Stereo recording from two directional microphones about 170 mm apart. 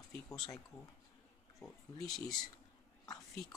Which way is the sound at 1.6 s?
Centre (ahead or behind).